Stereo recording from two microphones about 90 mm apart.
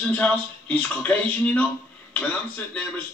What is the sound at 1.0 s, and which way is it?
Speech, 15° left (ahead or behind).